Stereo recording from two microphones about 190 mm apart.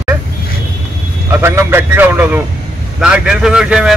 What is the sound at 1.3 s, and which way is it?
A man's voice, 10° right (ahead or behind).